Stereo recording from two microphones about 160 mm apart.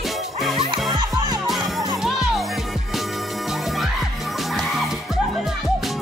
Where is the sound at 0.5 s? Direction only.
35° right (ahead or behind).